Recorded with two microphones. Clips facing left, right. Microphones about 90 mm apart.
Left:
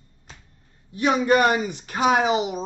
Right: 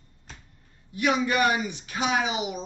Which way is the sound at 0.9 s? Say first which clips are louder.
Left 5 dB; 35° left (ahead or behind).